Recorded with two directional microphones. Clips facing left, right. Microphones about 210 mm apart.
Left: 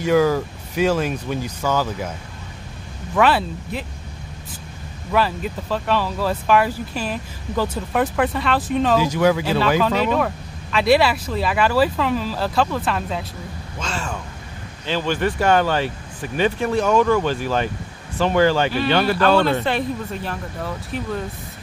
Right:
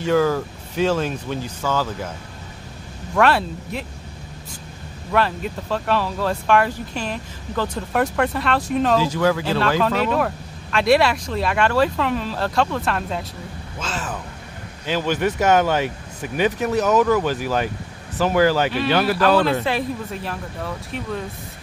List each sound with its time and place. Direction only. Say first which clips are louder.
0.0 s speech: left 2 dB; 10° left (ahead or behind)
3.2 s speech: even; centre (ahead or behind)
5.1 s speech: even; centre (ahead or behind)
8.9 s speech: left 3 dB; 15° left (ahead or behind)